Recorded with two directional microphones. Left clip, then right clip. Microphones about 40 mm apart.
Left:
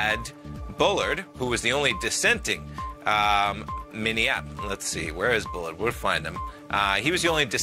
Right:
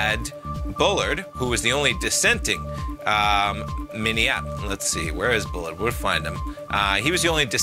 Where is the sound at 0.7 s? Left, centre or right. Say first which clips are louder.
Right 2 dB; right.